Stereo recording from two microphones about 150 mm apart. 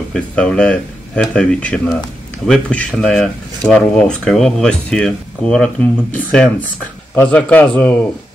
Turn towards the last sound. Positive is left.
turn(degrees=10)  # may be behind; listen again after turning